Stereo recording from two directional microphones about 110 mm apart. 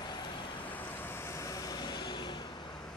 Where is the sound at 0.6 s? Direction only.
15° left (ahead or behind); by 2.4 s 45° left (ahead or behind).